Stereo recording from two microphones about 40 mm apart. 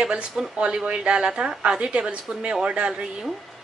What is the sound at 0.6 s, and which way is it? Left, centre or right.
A woman's voice, right.